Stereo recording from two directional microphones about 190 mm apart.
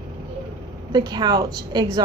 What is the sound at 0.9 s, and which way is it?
A woman's voice, 20° right (ahead or behind).